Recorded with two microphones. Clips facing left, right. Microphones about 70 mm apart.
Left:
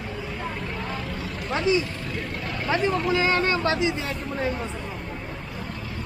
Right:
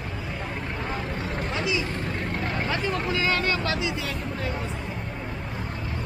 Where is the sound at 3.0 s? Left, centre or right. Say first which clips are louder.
Left 3 dB; left.